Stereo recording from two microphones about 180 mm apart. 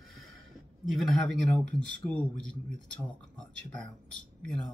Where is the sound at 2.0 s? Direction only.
10° left (ahead or behind).